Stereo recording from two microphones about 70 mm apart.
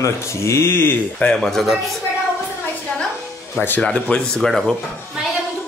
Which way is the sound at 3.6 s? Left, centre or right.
Left.